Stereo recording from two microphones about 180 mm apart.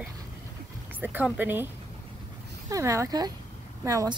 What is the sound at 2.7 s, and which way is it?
A woman's voice, 15° right (ahead or behind).